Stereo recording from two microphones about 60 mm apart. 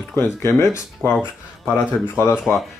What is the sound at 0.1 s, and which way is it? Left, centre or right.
Speech, left.